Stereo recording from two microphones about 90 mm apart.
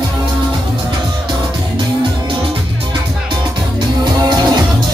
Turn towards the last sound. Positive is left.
turn(degrees=-50)  # may be behind; listen again after turning